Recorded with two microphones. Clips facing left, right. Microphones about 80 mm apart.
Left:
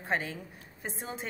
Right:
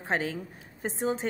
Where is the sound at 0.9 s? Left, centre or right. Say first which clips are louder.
Right 13 dB; right.